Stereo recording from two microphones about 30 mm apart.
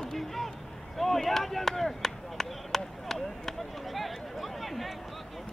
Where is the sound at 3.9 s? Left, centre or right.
Centre.